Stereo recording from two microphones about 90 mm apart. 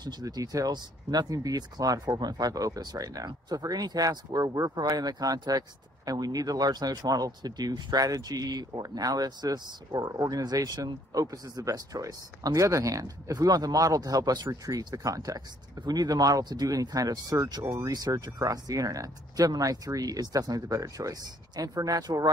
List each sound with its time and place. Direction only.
0.0 s speech: 45° right (ahead or behind)
17.6 s speech: 35° right (ahead or behind)
17.9 s speech: 50° right (ahead or behind)